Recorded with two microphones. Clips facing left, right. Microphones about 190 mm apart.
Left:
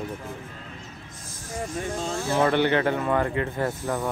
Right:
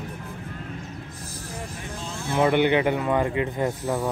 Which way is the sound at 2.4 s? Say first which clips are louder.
Right 2 dB; 15° right (ahead or behind).